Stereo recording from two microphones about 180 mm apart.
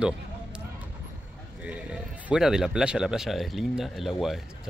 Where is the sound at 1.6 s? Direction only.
5° right (ahead or behind).